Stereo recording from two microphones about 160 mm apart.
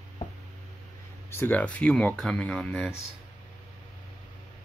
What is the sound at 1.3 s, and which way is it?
Speech, 10° left (ahead or behind).